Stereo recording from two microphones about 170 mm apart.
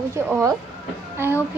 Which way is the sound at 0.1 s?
15° right (ahead or behind).